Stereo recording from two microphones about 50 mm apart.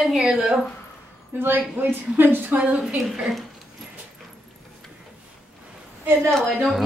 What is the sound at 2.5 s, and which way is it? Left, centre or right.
Speech, right.